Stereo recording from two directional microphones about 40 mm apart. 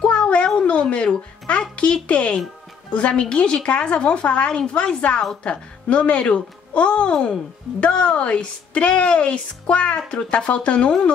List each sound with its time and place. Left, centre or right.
0.0 s cat: left
0.6 s music: left
2.0 s a woman's voice: left